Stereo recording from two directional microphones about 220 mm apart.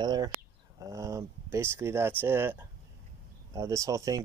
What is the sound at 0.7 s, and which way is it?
Speech, 15° right (ahead or behind).